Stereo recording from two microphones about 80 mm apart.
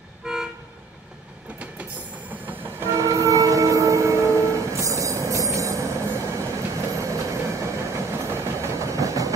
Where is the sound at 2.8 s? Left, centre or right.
Right.